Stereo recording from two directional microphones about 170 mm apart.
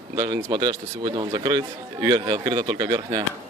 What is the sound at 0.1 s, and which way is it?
A man's voice, 25° right (ahead or behind).